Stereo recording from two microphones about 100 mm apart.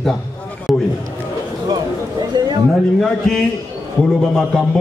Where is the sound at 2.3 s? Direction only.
45° right (ahead or behind).